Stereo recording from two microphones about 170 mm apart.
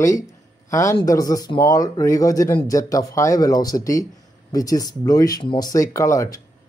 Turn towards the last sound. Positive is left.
turn(degrees=20)  # may be behind; listen again after turning